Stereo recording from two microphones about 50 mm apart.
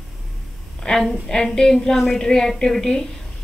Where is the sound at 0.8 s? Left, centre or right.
Centre.